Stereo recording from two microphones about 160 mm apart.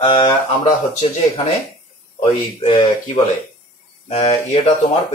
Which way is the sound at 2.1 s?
35° left (ahead or behind).